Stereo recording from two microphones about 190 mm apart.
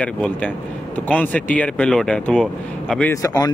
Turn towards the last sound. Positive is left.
turn(degrees=15)  # may be behind; listen again after turning